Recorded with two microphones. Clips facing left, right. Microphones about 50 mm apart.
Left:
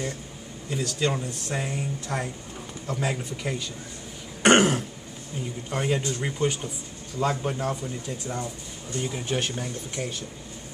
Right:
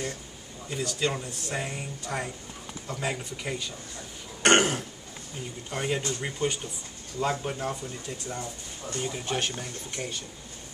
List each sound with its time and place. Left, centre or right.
0.7 s speech: centre
4.4 s throat clearing: centre
5.7 s speech: centre